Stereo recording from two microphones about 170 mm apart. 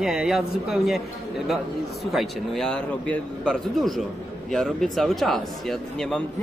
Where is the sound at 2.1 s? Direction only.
5° left (ahead or behind).